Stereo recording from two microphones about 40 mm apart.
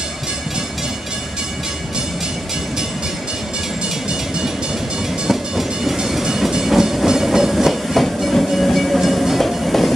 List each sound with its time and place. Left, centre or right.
5.2 s train: centre